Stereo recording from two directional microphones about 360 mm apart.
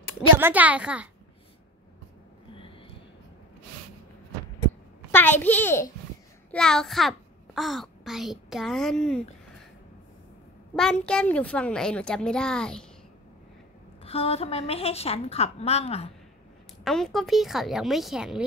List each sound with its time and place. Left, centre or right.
0.4 s a child's voice: centre
5.1 s a child's voice: centre
10.8 s a child's voice: centre
14.0 s a woman's voice: centre
16.8 s a child's voice: centre